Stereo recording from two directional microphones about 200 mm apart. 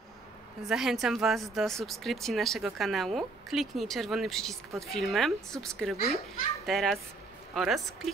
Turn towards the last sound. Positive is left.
turn(degrees=0)  # may be behind; listen again after turning